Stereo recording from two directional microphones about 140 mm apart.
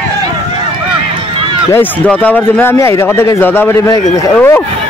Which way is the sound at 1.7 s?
10° left (ahead or behind).